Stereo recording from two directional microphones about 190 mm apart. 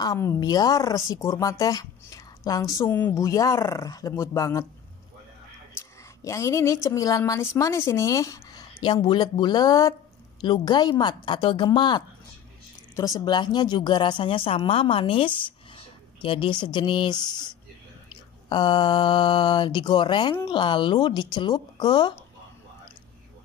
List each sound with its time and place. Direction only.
0.0 s a woman's voice: 15° left (ahead or behind)
6.2 s a woman's voice: 15° left (ahead or behind)
18.5 s speech: 25° left (ahead or behind)